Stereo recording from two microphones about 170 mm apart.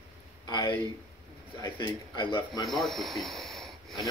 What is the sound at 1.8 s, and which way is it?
Speech, 30° left (ahead or behind).